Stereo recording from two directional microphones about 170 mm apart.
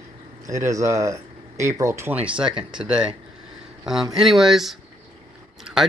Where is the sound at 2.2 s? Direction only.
5° right (ahead or behind).